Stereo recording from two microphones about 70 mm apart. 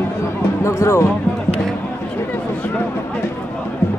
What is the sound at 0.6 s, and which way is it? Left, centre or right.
Speech, left.